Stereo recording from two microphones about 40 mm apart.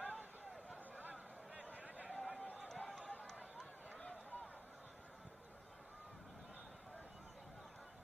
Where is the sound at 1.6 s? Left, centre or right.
Right.